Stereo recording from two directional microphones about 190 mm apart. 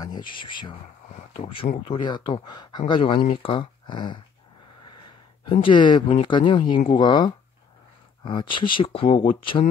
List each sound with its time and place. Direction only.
0.0 s speech: 25° left (ahead or behind)
5.4 s speech: 25° left (ahead or behind)